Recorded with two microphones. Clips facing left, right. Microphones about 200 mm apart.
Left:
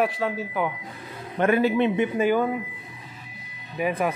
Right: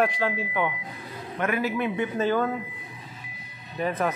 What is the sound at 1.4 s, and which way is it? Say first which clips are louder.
Speech: left 6 dB; 30° left (ahead or behind).